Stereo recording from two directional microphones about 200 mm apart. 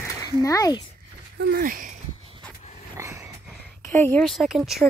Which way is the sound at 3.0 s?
15° right (ahead or behind).